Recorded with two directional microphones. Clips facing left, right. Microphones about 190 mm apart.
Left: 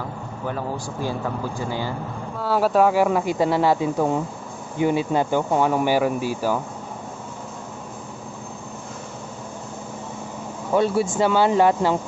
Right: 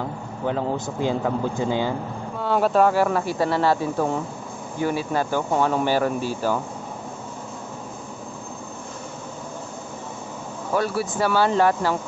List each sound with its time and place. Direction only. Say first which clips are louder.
0.5 s speech: right 4 dB; 20° right (ahead or behind)
2.3 s speech: even; 5° left (ahead or behind)
10.7 s speech: left 4 dB; 25° left (ahead or behind)